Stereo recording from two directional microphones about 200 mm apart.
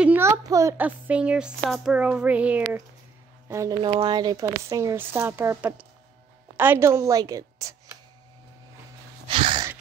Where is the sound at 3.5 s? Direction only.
20° right (ahead or behind).